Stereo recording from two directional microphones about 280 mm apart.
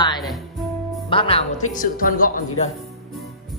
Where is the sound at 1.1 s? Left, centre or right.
Centre.